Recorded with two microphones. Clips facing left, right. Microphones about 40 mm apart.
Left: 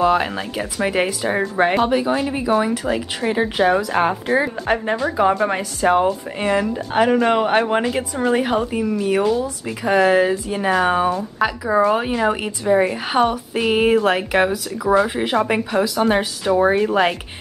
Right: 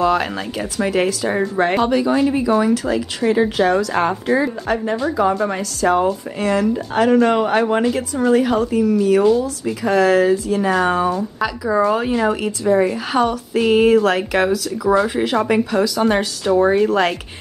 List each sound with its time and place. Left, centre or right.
0.0 s speech: centre
4.3 s a woman's voice: left